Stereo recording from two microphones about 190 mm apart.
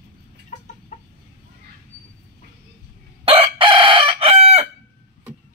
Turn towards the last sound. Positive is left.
turn(degrees=-30)  # may be behind; listen again after turning